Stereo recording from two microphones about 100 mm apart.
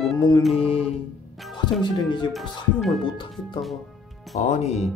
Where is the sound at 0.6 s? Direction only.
90° left.